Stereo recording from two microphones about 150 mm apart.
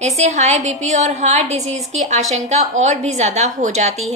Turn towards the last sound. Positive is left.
turn(degrees=-50)  # may be behind; listen again after turning